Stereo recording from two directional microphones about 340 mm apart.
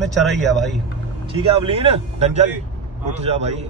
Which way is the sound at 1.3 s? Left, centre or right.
Centre.